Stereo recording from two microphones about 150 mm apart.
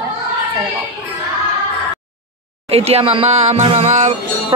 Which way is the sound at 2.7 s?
40° right (ahead or behind).